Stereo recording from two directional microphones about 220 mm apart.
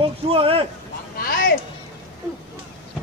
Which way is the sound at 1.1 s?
40° left (ahead or behind).